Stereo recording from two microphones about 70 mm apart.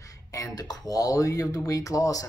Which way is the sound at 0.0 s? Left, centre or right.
Left.